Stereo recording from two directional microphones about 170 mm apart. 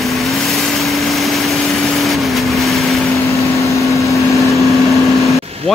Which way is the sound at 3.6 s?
20° left (ahead or behind).